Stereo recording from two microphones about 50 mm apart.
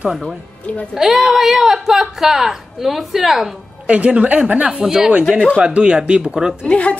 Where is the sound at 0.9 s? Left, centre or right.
Centre.